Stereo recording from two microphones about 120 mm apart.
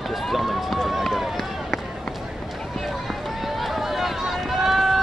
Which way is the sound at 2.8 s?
Centre (ahead or behind).